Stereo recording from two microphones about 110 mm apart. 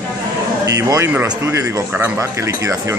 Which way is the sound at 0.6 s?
30° right (ahead or behind).